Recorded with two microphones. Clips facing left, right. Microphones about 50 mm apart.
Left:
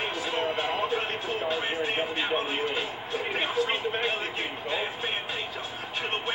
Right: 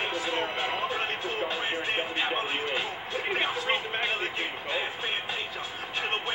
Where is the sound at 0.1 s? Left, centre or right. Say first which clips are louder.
Left 1 dB; right.